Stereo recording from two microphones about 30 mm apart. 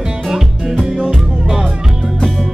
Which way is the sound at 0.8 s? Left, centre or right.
Centre.